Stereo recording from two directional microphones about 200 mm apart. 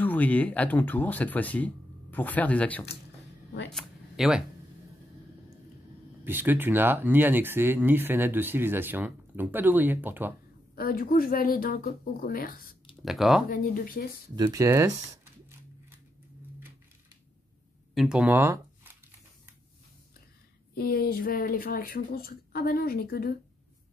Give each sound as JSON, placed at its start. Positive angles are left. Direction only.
{"t": 0.0, "sound": "speech", "side_deg": 10}
{"t": 3.7, "sound": "a sound", "side_deg": 0}
{"t": 6.2, "sound": "speech", "side_deg": -10}
{"t": 10.8, "sound": "speech", "side_deg": 45}
{"t": 13.0, "sound": "speech", "side_deg": 0}
{"t": 13.5, "sound": "speech", "side_deg": 45}
{"t": 14.3, "sound": "speech", "side_deg": -15}
{"t": 17.9, "sound": "speech", "side_deg": -5}
{"t": 20.7, "sound": "speech", "side_deg": 50}